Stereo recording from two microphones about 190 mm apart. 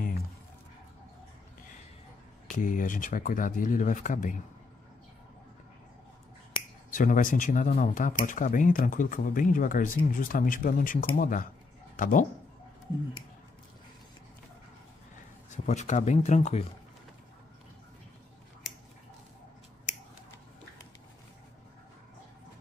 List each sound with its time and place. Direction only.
2.5 s speech: 45° left (ahead or behind)
6.9 s speech: 45° left (ahead or behind)
15.5 s speech: 40° left (ahead or behind)